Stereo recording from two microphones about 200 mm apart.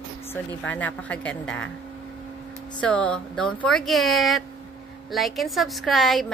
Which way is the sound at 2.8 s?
5° left (ahead or behind).